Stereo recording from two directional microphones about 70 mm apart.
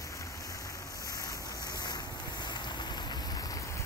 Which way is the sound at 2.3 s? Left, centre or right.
Left.